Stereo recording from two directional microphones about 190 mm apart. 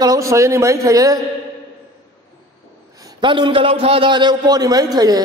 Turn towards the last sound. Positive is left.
turn(degrees=-20)  # may be behind; listen again after turning